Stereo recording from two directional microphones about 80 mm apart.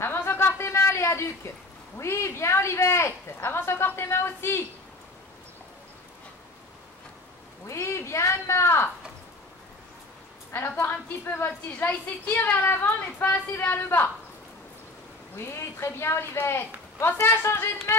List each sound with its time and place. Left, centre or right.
0.0 s a sound: left
2.0 s speech: left
7.6 s speech: left
10.5 s a woman's voice: left
15.3 s speech: left